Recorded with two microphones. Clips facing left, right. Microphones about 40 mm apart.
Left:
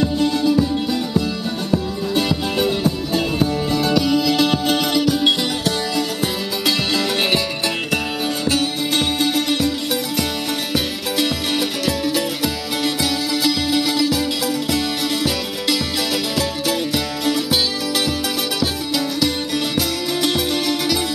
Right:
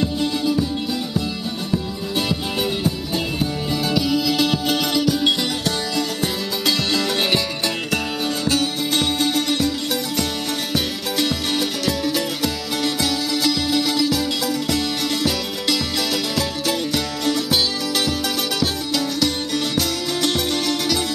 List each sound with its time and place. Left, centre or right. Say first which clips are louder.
0.0 s music: left 3 dB; centre
2.1 s music: left 3 dB; centre
8.5 s music: left 1 dB; centre
10.7 s music: left 1 dB; centre
16.3 s music: left 2 dB; centre
18.6 s music: left 1 dB; centre